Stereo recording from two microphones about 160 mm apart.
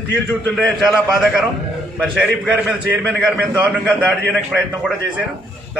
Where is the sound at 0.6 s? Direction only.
Centre (ahead or behind).